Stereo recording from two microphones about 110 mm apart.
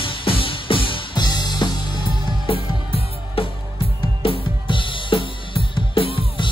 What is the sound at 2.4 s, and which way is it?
Music, 55° left (ahead or behind).